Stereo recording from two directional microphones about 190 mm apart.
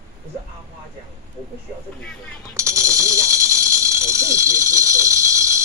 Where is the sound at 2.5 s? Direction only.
15° right (ahead or behind).